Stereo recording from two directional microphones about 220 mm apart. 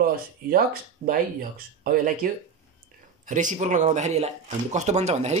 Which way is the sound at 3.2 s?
35° right (ahead or behind).